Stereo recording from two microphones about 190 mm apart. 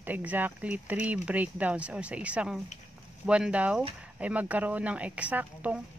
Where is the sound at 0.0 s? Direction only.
10° right (ahead or behind).